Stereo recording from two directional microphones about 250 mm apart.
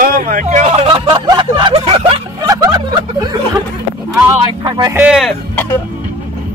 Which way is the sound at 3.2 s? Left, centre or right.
Centre.